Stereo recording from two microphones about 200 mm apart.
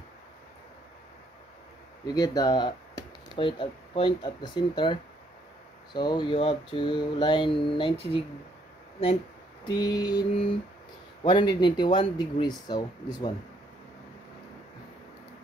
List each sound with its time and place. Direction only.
2.0 s speech: 20° left (ahead or behind)
5.9 s mantra: 25° left (ahead or behind)
9.7 s mantra: 20° left (ahead or behind)